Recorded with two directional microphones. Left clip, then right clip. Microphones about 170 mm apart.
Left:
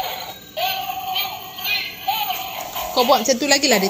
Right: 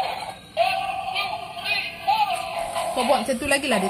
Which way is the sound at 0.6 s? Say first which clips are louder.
Right 1 dB; 15° left (ahead or behind).